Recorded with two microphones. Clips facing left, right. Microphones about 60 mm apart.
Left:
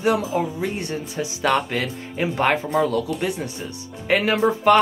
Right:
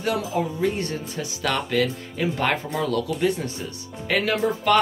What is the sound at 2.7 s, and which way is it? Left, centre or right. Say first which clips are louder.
Speech: left 3 dB; centre.